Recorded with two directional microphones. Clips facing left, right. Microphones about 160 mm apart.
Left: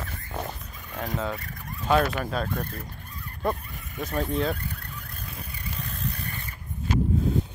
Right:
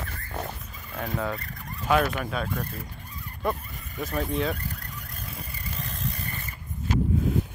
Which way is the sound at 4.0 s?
Centre (ahead or behind).